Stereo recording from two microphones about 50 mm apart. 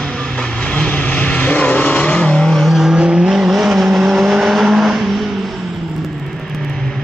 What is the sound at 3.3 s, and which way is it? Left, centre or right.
Vehicle, centre.